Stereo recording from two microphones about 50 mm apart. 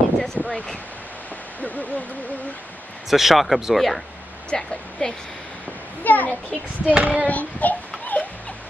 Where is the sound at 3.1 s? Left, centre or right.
Centre.